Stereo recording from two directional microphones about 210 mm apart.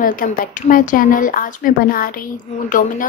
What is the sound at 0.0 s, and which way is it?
A woman's voice, 40° left (ahead or behind).